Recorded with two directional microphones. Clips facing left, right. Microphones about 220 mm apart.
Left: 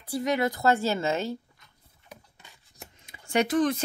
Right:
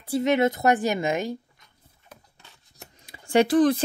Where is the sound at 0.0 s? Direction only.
25° right (ahead or behind).